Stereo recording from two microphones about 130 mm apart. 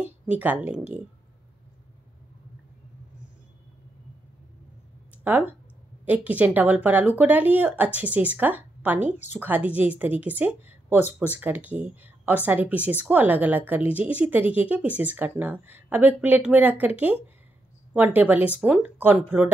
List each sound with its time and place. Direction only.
0.3 s a woman's voice: 10° right (ahead or behind)
5.2 s a woman's voice: 15° right (ahead or behind)